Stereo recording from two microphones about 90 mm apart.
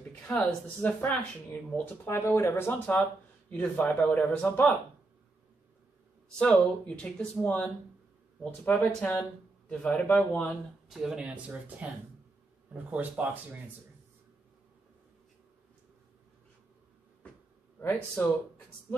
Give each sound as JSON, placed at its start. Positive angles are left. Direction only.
{"t": 0.5, "sound": "speech", "side_deg": 20}
{"t": 2.0, "sound": "a man's voice", "side_deg": 30}
{"t": 6.2, "sound": "a man's voice", "side_deg": 10}
{"t": 10.9, "sound": "speech", "side_deg": -5}
{"t": 11.1, "sound": "speech", "side_deg": -15}
{"t": 17.7, "sound": "speech", "side_deg": 20}